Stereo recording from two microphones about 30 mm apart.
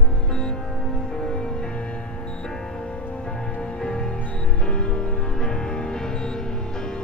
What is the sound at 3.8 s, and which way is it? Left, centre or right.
Music, left.